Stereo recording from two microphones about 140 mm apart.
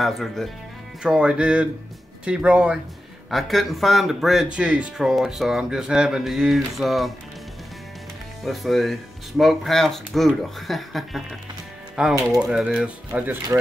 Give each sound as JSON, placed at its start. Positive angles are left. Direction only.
{"t": 0.0, "sound": "speech", "side_deg": 0}
{"t": 8.5, "sound": "speech", "side_deg": 0}